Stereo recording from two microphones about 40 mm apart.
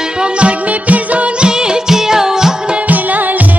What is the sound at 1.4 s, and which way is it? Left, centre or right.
Music, centre.